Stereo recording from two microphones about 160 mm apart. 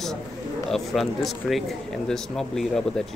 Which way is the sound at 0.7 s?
Centre (ahead or behind).